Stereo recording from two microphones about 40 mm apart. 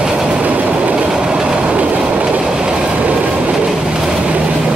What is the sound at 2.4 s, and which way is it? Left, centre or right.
Train, centre.